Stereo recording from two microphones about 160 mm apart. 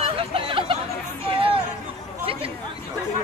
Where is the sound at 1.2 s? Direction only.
35° right (ahead or behind).